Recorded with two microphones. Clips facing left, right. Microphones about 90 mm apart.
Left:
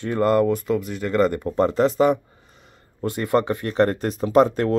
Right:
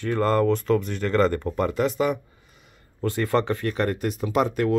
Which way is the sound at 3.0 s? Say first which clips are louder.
Left 2 dB; 20° left (ahead or behind).